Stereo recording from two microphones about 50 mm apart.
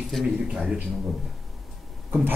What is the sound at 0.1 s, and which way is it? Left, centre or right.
Speech, centre.